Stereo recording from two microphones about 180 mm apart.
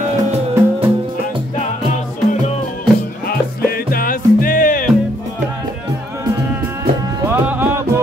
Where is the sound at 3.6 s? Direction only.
55° left (ahead or behind).